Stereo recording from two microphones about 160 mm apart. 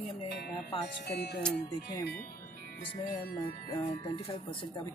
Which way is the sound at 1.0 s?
90° left.